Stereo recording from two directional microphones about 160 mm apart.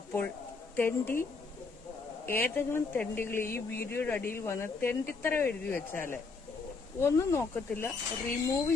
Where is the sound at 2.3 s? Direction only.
15° left (ahead or behind).